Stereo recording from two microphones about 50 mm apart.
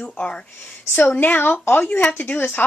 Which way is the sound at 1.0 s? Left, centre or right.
Left.